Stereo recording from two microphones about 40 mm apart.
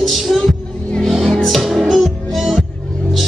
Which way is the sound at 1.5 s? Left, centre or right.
Centre.